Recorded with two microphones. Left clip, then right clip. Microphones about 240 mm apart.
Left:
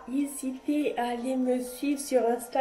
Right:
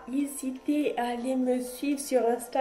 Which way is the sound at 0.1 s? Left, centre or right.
Centre.